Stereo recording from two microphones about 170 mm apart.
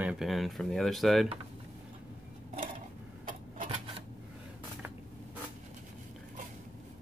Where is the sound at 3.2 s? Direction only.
50° right (ahead or behind).